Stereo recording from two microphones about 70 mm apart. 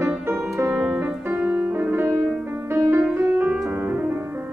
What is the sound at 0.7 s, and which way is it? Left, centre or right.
Music, right.